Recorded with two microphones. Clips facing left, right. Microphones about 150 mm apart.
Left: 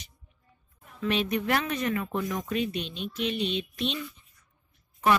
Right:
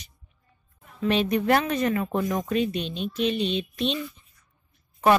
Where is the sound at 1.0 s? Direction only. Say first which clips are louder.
Right 5 dB; 35° right (ahead or behind).